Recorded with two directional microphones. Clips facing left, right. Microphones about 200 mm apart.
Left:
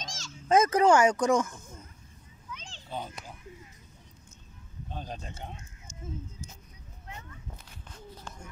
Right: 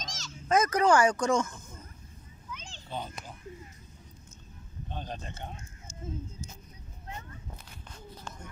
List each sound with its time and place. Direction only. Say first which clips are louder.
0.0 s a child's voice: even; 30° left (ahead or behind)
2.5 s a sound: even; centre (ahead or behind)
4.8 s speech: even; 5° left (ahead or behind)